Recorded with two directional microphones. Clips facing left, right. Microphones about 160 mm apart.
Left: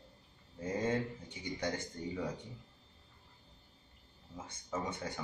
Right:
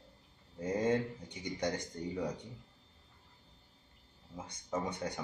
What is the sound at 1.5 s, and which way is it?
Speech, 15° right (ahead or behind).